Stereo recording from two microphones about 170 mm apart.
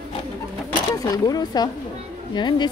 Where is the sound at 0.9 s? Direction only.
20° left (ahead or behind).